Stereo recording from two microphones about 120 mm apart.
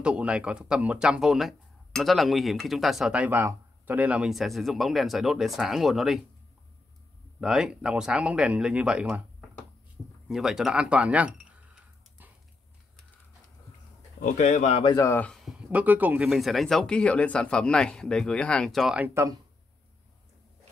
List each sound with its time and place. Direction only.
0.0 s speech: 10° right (ahead or behind)
7.3 s speech: 5° right (ahead or behind)
10.2 s a sound: 5° right (ahead or behind)
14.2 s speech: 80° left
15.7 s speech: 15° right (ahead or behind)
18.9 s speech: 15° right (ahead or behind)